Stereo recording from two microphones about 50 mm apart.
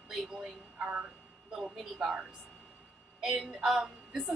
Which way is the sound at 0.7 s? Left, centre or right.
Right.